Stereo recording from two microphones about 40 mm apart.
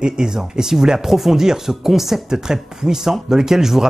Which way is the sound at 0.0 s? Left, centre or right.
Centre.